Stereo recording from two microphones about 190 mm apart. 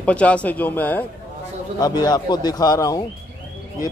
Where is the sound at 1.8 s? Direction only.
20° left (ahead or behind).